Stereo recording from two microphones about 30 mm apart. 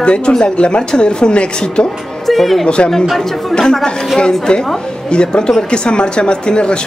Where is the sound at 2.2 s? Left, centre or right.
Centre.